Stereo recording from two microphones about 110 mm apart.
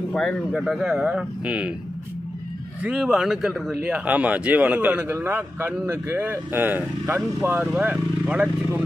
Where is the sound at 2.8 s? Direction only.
5° right (ahead or behind).